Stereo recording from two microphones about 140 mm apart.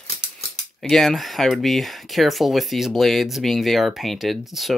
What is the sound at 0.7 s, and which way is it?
Speech, centre (ahead or behind).